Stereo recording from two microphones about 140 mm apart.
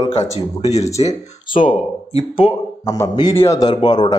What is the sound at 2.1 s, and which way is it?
Speech, 50° left (ahead or behind).